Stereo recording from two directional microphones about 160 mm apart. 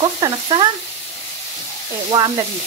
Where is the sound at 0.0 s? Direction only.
30° right (ahead or behind).